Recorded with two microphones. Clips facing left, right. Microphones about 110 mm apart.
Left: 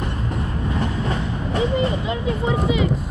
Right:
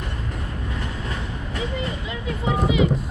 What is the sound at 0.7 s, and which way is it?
Vehicle, 25° left (ahead or behind).